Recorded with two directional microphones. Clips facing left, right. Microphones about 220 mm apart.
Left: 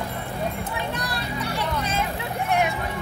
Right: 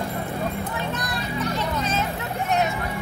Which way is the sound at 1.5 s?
10° left (ahead or behind).